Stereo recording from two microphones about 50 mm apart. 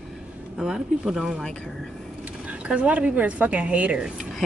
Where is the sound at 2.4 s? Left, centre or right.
Right.